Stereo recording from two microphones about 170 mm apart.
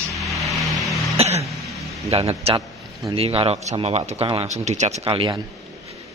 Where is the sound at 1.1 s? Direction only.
40° right (ahead or behind).